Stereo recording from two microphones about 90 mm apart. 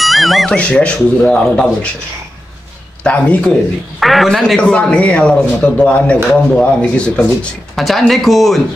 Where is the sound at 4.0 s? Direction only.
Centre (ahead or behind).